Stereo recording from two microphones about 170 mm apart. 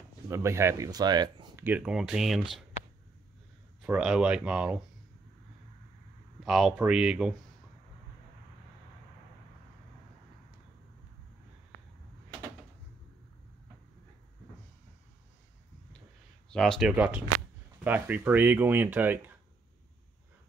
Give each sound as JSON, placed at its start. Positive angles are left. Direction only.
{"t": 0.3, "sound": "speech", "side_deg": -15}
{"t": 1.6, "sound": "speech", "side_deg": -10}
{"t": 3.8, "sound": "speech", "side_deg": -5}
{"t": 6.4, "sound": "speech", "side_deg": 0}
{"t": 16.4, "sound": "speech", "side_deg": 5}
{"t": 16.9, "sound": "speech", "side_deg": -10}